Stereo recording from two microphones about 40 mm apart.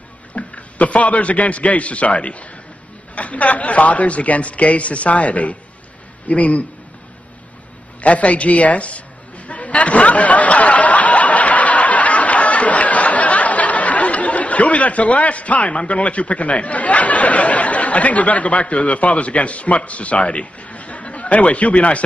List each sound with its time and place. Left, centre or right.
0.3 s a man's voice: left
8.0 s speech: left
9.5 s a sound: left
15.8 s speech: left